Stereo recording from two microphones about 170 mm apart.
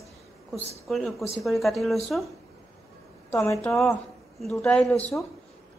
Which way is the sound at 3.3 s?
20° left (ahead or behind).